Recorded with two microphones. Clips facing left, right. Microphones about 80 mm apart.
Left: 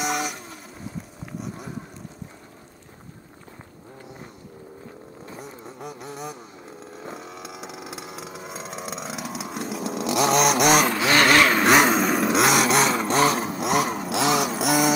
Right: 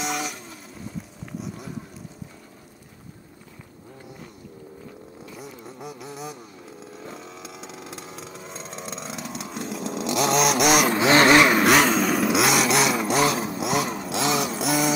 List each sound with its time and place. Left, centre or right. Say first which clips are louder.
0.0 s vehicle: left 2 dB; centre
6.0 s vehicle: left 1 dB; centre
10.9 s vehicle: right 2 dB; right
11.6 s a sound: left 1 dB; centre